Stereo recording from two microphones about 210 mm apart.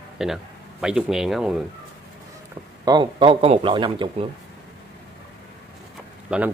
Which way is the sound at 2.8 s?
20° right (ahead or behind).